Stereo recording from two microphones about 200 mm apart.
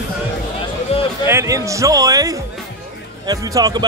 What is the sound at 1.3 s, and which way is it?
Speech, 15° right (ahead or behind).